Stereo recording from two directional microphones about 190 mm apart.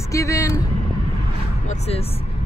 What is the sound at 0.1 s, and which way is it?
Speech, 15° left (ahead or behind).